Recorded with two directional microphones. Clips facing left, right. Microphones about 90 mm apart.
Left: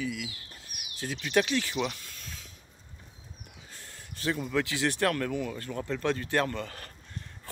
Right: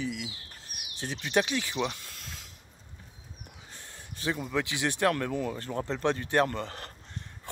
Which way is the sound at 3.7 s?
20° right (ahead or behind).